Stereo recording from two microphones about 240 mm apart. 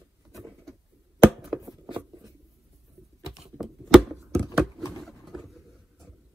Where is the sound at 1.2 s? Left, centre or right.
Centre.